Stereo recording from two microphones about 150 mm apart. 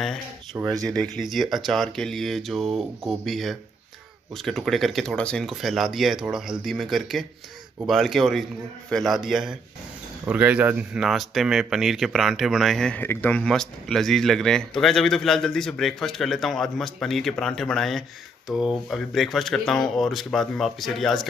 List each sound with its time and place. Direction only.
0.7 s speech: 5° left (ahead or behind)